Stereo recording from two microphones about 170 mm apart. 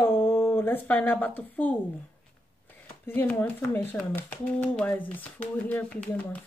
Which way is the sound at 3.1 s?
10° left (ahead or behind).